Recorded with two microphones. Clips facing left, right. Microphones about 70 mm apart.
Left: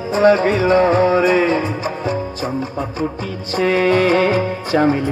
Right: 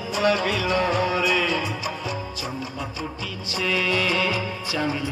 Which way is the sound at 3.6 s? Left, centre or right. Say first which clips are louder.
Left 10 dB; left.